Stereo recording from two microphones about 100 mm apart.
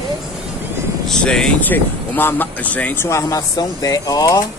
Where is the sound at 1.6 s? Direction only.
20° left (ahead or behind).